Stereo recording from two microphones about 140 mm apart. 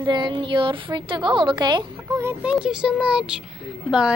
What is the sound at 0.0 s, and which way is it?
A woman's voice, 35° right (ahead or behind).